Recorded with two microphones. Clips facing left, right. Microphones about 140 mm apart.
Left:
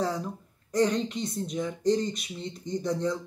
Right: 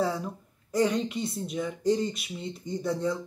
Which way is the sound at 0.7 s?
5° right (ahead or behind).